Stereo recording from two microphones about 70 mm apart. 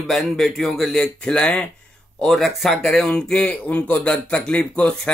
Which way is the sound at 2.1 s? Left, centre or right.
Centre.